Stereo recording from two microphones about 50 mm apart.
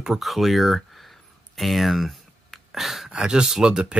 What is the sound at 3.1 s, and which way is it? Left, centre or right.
Speech, centre.